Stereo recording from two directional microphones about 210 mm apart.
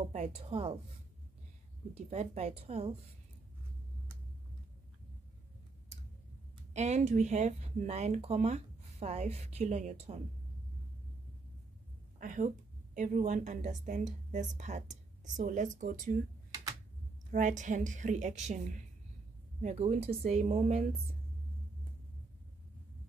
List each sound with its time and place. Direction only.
0.1 s a woman's voice: 30° right (ahead or behind)
2.0 s a woman's voice: 30° right (ahead or behind)
6.7 s speech: 35° right (ahead or behind)
12.2 s a woman's voice: 40° right (ahead or behind)
17.3 s speech: 35° right (ahead or behind)
19.6 s speech: 30° right (ahead or behind)